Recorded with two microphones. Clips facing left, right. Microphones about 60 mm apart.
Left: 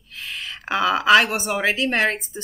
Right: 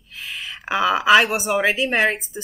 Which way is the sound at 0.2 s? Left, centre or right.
Centre.